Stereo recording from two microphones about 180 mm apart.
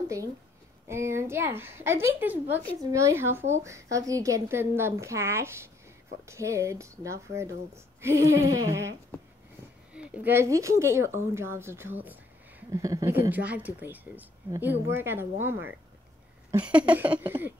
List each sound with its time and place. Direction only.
0.8 s a woman's voice: 15° right (ahead or behind)
9.9 s a woman's voice: 10° right (ahead or behind)
16.6 s a woman's voice: 5° right (ahead or behind)